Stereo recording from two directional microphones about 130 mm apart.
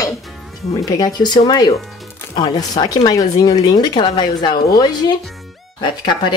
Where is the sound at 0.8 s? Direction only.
30° left (ahead or behind).